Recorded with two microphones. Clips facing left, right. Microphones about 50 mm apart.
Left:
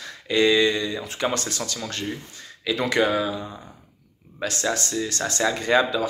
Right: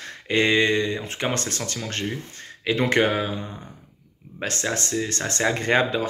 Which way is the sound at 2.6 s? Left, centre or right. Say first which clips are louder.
Right 1 dB; right.